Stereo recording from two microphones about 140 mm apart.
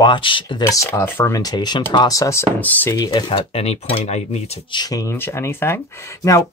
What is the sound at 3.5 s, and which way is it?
Speech, 50° left (ahead or behind).